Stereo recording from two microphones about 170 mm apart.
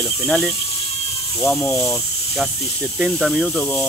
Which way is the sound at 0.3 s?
Centre (ahead or behind).